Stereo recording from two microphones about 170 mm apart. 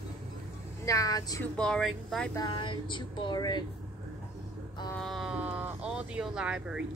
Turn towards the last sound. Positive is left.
turn(degrees=-5)  # may be behind; listen again after turning